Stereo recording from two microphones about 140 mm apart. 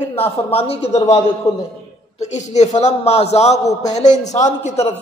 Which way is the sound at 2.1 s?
55° left (ahead or behind).